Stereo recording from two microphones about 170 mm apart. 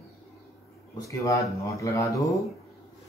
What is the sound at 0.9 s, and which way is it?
Speech, 20° left (ahead or behind).